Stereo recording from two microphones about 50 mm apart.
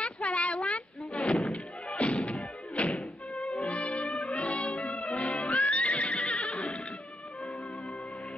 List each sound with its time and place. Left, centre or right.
0.0 s a sound: centre
1.1 s a sound: centre
1.5 s music: left
2.0 s music: centre
3.7 s music: left
5.4 s music: centre
5.7 s neigh: left
6.3 s neigh: centre